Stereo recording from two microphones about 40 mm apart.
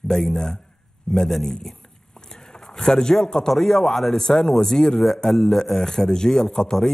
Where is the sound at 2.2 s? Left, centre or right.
Centre.